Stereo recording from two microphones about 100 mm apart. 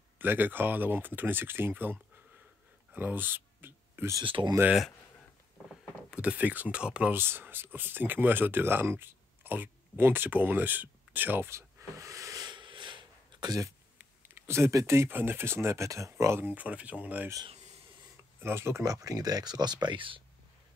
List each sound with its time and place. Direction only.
0.2 s speech: 20° right (ahead or behind)
2.9 s a sound: 20° right (ahead or behind)
4.2 s speech: 55° right (ahead or behind)
6.0 s speech: 10° right (ahead or behind)
7.2 s speech: 20° right (ahead or behind)
12.4 s a sound: 55° right (ahead or behind)
14.4 s speech: 25° right (ahead or behind)
18.4 s speech: 25° right (ahead or behind); by 20.2 s 55° right (ahead or behind)